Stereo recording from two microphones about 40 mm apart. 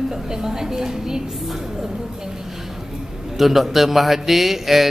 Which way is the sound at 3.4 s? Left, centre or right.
Centre.